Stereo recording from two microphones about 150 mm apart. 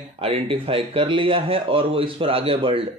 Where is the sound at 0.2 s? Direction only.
40° right (ahead or behind).